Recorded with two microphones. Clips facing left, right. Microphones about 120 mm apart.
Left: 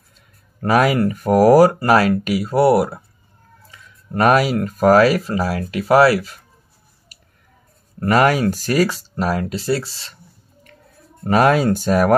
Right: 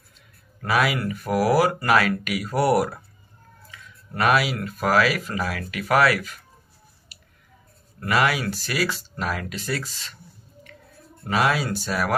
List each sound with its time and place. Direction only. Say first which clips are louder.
0.6 s speech: left 7 dB; 40° left (ahead or behind); by 3.0 s 25° left (ahead or behind)
3.7 s speech: left 8 dB; 40° left (ahead or behind)
7.1 s a sound: left 1 dB; 40° left (ahead or behind)
8.0 s speech: left 7 dB; 45° left (ahead or behind)
11.2 s speech: left 8 dB; 45° left (ahead or behind)